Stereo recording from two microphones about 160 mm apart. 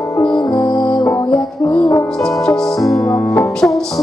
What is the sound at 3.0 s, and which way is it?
Music, 20° left (ahead or behind).